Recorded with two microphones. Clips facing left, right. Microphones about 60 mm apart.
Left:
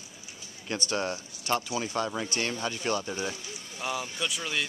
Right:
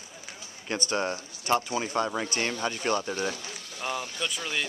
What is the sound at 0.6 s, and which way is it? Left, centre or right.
Speech, right.